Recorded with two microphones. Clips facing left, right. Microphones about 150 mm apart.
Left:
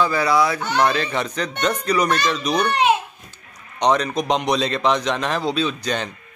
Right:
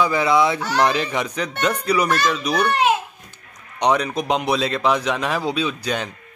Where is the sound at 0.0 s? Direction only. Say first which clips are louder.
Right 1 dB; 20° right (ahead or behind).